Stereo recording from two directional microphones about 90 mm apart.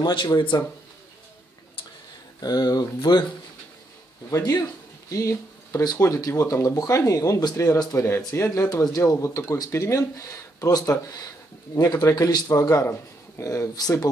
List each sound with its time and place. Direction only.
0.0 s speech: 55° left (ahead or behind)
2.4 s speech: 45° left (ahead or behind)
4.4 s speech: 40° left (ahead or behind)